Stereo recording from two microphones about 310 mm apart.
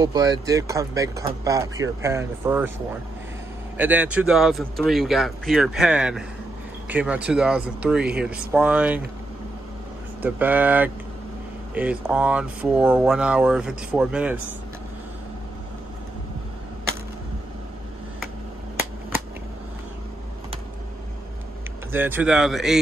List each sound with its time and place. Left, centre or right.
0.0 s speech: centre
3.7 s speech: centre
10.2 s speech: centre
21.9 s speech: centre